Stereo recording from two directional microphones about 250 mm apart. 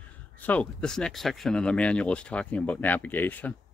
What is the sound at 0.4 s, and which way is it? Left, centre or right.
Speech, centre.